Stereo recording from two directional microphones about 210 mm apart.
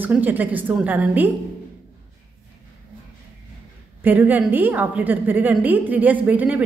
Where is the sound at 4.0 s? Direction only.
10° right (ahead or behind).